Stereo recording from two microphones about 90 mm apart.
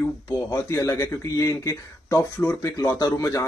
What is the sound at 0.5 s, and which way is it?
Speech, 35° left (ahead or behind).